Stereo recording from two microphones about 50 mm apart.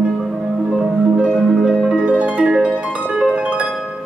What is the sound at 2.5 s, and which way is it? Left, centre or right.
Music, right.